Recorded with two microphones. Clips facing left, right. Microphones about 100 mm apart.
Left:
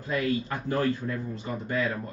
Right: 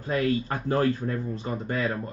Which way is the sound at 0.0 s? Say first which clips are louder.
Right 2 dB; 45° right (ahead or behind).